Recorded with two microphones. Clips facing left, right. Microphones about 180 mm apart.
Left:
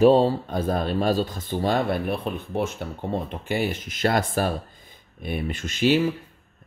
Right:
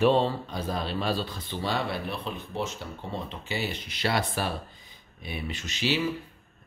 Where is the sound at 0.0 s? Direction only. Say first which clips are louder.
Left 6 dB; 40° left (ahead or behind).